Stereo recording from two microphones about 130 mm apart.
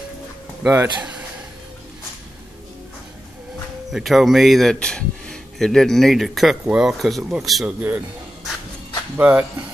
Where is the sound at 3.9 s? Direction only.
Centre (ahead or behind).